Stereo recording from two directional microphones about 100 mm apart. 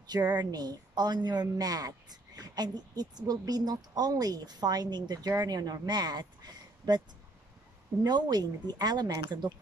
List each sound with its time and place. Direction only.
0.0 s a woman's voice: 40° right (ahead or behind)
8.0 s a woman's voice: 45° right (ahead or behind)